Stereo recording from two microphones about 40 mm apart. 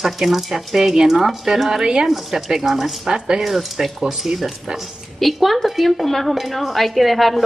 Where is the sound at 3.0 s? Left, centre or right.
Centre.